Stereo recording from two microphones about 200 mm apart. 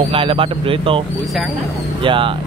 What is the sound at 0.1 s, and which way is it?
Speech, 25° right (ahead or behind).